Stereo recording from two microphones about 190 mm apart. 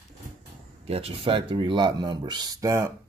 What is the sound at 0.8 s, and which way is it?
Speech, 30° right (ahead or behind).